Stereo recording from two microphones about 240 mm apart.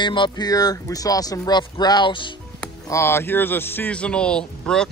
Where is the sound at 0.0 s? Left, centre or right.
Centre.